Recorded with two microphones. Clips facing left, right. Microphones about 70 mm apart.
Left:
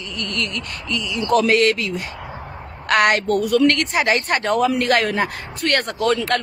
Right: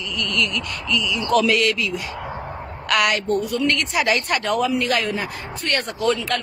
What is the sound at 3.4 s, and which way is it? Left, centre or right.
Speech, left.